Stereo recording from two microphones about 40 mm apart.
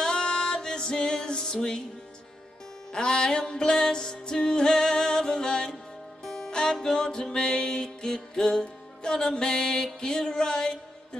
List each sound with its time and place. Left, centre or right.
0.0 s music: centre
2.9 s music: centre